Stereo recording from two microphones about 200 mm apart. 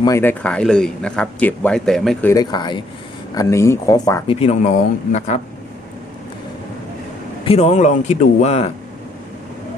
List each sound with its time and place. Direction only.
0.0 s speech: 15° left (ahead or behind)
2.3 s speech: 20° left (ahead or behind)
4.4 s speech: 35° left (ahead or behind)
7.4 s speech: 30° left (ahead or behind)